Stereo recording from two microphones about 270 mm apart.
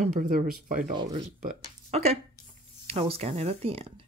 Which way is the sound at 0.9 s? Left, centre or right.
Centre.